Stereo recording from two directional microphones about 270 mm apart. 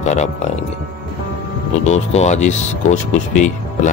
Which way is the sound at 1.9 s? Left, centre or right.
Left.